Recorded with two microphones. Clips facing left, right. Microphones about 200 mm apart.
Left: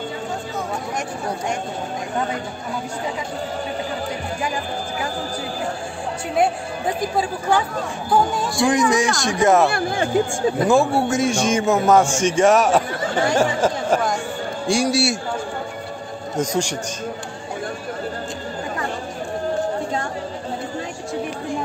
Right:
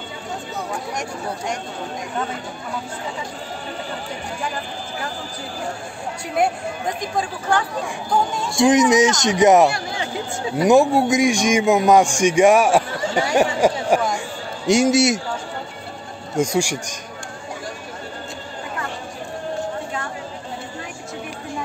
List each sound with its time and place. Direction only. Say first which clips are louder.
7.0 s speech: left 3 dB; 10° left (ahead or behind)
8.5 s speech: right 4 dB; 20° right (ahead or behind)
9.7 s speech: left 4 dB; 55° left (ahead or behind)
10.6 s a man's voice: right 4 dB; 15° right (ahead or behind)
16.3 s a man's voice: right 2 dB; 10° right (ahead or behind)